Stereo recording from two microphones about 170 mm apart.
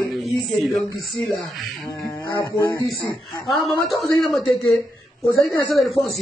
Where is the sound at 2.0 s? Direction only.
20° left (ahead or behind).